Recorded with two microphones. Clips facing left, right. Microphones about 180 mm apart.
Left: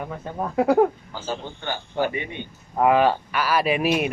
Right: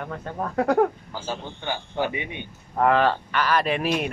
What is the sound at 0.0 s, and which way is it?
Speech, 10° left (ahead or behind).